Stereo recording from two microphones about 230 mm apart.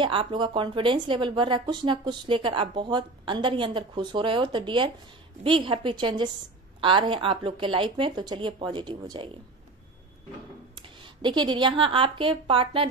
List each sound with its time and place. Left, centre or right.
0.0 s speech: right
11.2 s speech: centre